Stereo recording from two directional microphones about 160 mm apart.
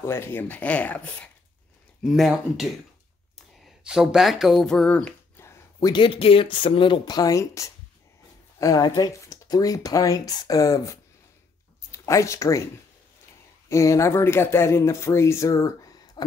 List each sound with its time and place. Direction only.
0.0 s speech: 15° left (ahead or behind)
2.0 s speech: 5° right (ahead or behind); by 12.6 s 20° left (ahead or behind)
13.7 s speech: 20° left (ahead or behind)